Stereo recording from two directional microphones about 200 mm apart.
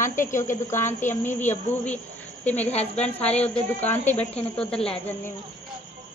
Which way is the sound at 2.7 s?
30° left (ahead or behind).